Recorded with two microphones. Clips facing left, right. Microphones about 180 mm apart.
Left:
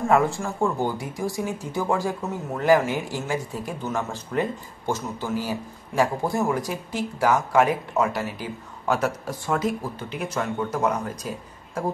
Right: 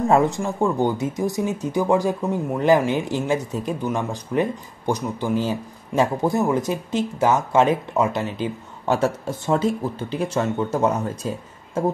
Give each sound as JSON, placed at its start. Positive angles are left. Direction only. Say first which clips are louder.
{"t": 0.1, "sound": "speech", "louder": "right 1 dB", "side_deg": -20}